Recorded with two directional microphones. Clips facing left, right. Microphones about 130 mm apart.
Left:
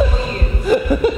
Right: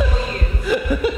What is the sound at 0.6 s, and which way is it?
Chuckle, 40° left (ahead or behind).